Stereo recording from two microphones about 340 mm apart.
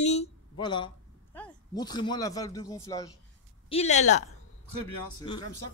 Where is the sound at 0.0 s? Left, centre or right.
Centre.